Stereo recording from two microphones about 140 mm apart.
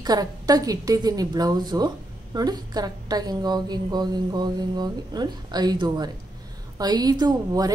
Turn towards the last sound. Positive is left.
turn(degrees=-25)  # may be behind; listen again after turning